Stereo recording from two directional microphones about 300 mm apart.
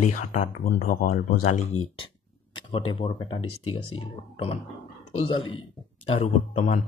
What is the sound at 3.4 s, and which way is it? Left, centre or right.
Speech, left.